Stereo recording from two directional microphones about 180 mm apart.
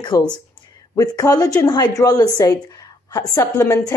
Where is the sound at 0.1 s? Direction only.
20° left (ahead or behind).